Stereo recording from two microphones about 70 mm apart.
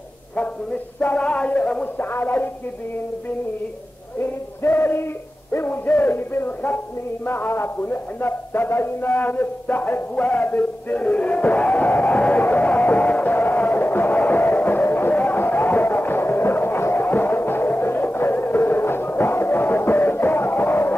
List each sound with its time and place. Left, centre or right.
0.9 s speech: left
2.0 s music: left
4.2 s music: left
5.5 s speech: left
7.2 s a sound: left